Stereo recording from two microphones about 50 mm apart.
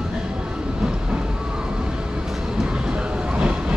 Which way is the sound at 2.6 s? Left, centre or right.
Centre.